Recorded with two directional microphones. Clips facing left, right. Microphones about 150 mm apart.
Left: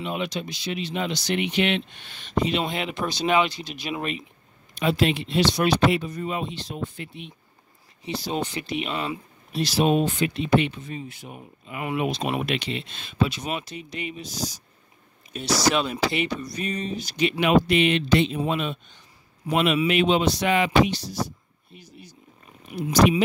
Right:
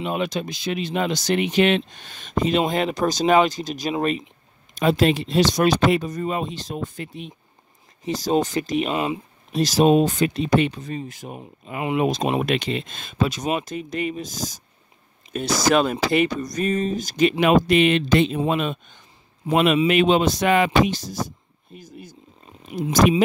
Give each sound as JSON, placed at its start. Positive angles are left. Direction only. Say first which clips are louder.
{"t": 0.0, "sound": "speech", "louder": "right 4 dB", "side_deg": -45}
{"t": 22.7, "sound": "speech", "louder": "right 3 dB", "side_deg": -25}